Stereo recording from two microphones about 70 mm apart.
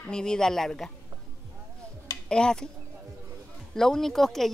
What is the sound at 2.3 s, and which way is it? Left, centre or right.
Speech, centre.